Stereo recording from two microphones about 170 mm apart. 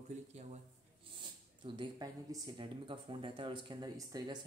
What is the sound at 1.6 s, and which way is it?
Speech, 30° right (ahead or behind).